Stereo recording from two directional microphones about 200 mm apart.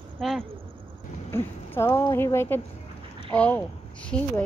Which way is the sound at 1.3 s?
10° left (ahead or behind).